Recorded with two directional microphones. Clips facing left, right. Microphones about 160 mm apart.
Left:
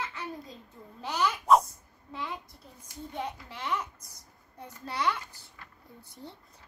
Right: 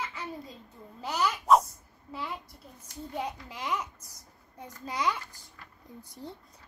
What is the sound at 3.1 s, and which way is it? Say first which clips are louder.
Speech: right 2 dB; 10° right (ahead or behind).